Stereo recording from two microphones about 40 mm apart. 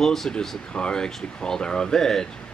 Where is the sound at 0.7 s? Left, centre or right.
Left.